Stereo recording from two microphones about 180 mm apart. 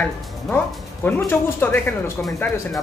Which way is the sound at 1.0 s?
10° left (ahead or behind).